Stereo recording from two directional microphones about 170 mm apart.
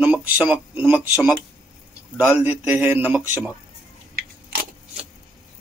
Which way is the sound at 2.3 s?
10° right (ahead or behind).